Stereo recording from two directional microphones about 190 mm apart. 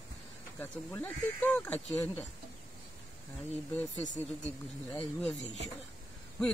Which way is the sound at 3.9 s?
40° left (ahead or behind).